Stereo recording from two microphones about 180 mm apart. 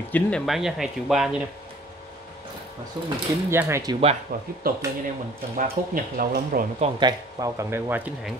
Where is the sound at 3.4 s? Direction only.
15° right (ahead or behind).